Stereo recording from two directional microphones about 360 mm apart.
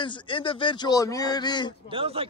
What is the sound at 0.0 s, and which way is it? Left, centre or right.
Speech, centre.